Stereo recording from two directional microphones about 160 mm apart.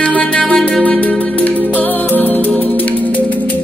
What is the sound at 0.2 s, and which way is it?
Music, 5° left (ahead or behind).